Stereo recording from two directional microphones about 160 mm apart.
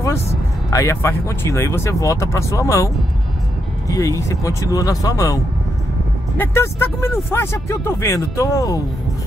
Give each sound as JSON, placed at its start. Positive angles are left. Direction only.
{"t": 0.7, "sound": "speech", "side_deg": 20}
{"t": 3.9, "sound": "speech", "side_deg": 20}